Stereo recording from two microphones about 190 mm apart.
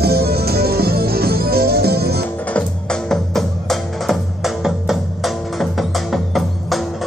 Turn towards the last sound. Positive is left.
turn(degrees=0)  # may be behind; listen again after turning